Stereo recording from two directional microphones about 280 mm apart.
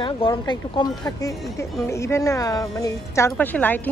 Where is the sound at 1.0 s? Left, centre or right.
Centre.